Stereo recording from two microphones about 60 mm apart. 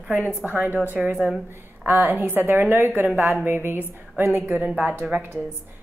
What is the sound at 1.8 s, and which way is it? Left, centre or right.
A woman's voice, right.